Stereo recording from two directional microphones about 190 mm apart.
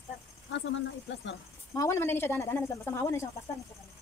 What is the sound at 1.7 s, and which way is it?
A woman's voice, 15° left (ahead or behind).